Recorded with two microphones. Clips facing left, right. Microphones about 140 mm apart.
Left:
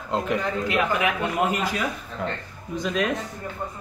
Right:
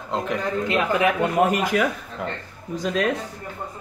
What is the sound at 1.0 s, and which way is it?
Speech, 50° right (ahead or behind).